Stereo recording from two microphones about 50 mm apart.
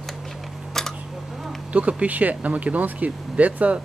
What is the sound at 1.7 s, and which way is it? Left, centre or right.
Speech, right.